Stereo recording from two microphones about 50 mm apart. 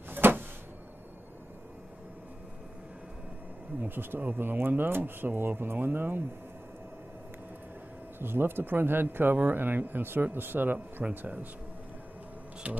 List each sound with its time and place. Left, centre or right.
0.1 s a sound: right
3.8 s speech: right
8.2 s speech: right
11.1 s speech: right
12.6 s speech: right